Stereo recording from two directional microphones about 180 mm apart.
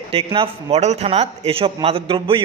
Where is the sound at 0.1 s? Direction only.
30° right (ahead or behind).